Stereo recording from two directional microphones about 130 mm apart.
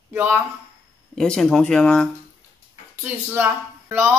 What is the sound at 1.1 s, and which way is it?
Speech, 5° left (ahead or behind).